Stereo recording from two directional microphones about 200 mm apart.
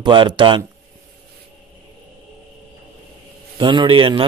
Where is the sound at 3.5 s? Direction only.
25° right (ahead or behind).